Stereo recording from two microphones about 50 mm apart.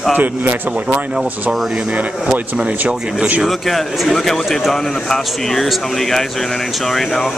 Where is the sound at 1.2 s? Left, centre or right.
Centre.